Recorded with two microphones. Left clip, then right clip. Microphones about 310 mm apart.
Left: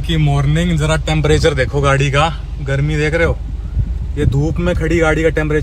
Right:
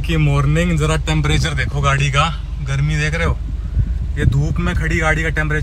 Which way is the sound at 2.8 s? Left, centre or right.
Centre.